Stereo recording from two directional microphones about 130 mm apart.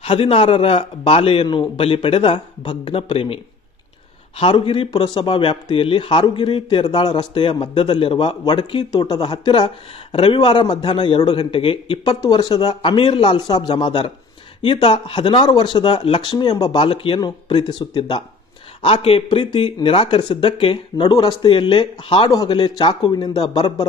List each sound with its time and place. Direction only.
0.0 s a man's voice: 45° left (ahead or behind)
4.4 s a man's voice: 45° left (ahead or behind)
18.9 s a man's voice: 45° left (ahead or behind); by 22.6 s 25° left (ahead or behind)
22.6 s a man's voice: 40° left (ahead or behind)